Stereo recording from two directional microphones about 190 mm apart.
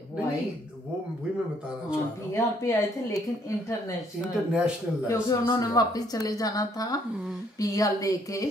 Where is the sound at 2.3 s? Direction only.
15° left (ahead or behind).